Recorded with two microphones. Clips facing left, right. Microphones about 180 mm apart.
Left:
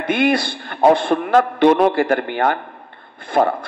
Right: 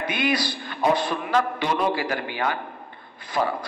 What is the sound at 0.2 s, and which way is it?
A man's voice, 55° left (ahead or behind).